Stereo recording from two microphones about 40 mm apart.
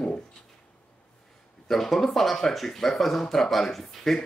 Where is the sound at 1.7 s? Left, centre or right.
Centre.